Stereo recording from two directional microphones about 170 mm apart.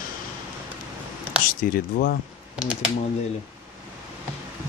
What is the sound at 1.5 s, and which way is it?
Speech, 55° left (ahead or behind).